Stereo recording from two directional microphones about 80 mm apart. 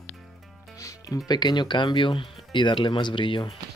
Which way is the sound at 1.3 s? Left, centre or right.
Left.